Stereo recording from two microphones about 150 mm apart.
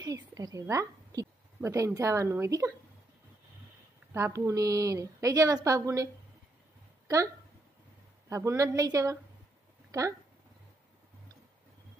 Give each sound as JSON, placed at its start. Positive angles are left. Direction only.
{"t": 0.0, "sound": "a woman's voice", "side_deg": -25}
{"t": 4.1, "sound": "a woman's voice", "side_deg": -20}
{"t": 8.3, "sound": "a woman's voice", "side_deg": -20}
{"t": 9.8, "sound": "a sound", "side_deg": -20}